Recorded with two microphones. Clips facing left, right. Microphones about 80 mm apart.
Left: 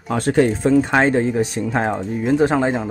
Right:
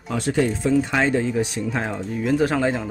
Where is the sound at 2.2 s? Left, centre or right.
Left.